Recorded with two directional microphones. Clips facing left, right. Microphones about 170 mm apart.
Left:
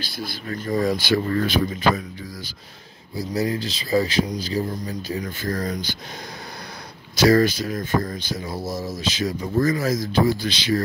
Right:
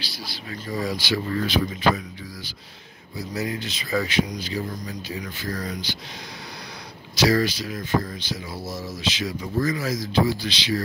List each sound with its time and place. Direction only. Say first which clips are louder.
0.0 s speech: left 5 dB; 50° left (ahead or behind)
7.2 s speech: left 4 dB; 50° left (ahead or behind)